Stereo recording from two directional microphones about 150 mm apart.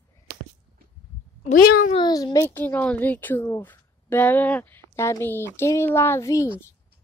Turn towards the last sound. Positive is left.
turn(degrees=20)  # may be behind; listen again after turning